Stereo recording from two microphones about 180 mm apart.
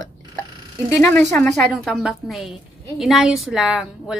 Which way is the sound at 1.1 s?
5° left (ahead or behind).